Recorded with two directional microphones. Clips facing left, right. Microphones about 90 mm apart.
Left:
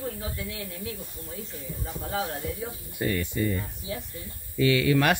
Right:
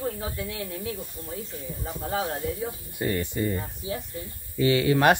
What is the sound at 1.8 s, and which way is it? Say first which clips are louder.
Speech: right 2 dB; 35° right (ahead or behind).